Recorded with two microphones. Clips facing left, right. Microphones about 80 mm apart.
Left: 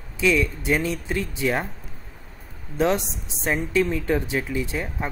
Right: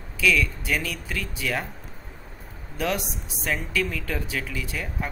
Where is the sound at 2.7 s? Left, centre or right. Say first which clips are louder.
Left 5 dB; left.